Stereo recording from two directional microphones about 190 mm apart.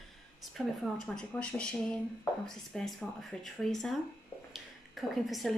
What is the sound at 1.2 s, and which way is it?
Speech, 5° left (ahead or behind).